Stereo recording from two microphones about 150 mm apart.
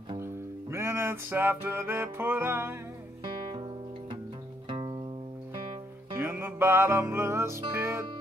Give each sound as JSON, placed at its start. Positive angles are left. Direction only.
{"t": 0.2, "sound": "music", "side_deg": -15}
{"t": 4.6, "sound": "music", "side_deg": -35}
{"t": 6.1, "sound": "music", "side_deg": -15}